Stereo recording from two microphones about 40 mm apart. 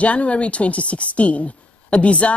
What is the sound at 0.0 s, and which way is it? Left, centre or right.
Speech, left.